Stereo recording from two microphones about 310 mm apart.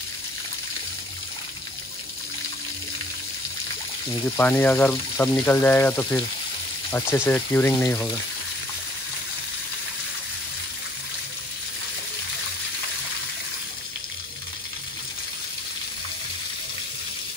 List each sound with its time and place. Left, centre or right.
4.4 s speech: centre